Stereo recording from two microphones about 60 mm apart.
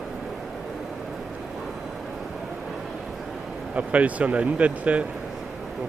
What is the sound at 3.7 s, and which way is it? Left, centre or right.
Speech, right.